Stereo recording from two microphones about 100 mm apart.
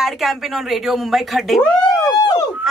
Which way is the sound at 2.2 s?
45° left (ahead or behind).